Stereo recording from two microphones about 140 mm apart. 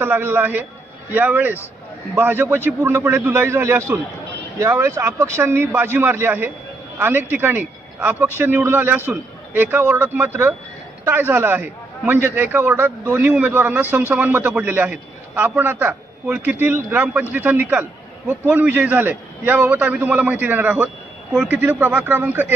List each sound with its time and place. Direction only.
0.0 s a man's voice: 15° right (ahead or behind)